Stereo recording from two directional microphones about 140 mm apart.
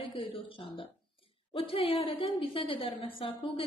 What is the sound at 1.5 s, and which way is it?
A woman's voice, 40° left (ahead or behind).